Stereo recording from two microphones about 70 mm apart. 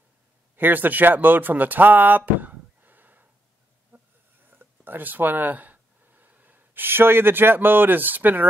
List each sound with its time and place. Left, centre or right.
0.6 s speech: right
3.9 s snoring: right
4.5 s speech: right